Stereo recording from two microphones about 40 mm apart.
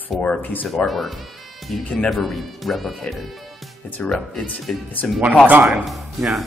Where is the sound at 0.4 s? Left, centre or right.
Left.